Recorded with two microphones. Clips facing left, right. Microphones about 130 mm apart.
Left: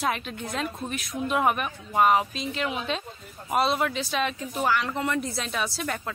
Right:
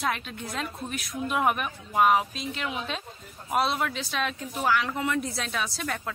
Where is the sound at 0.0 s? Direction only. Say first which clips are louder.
Left 2 dB; centre (ahead or behind).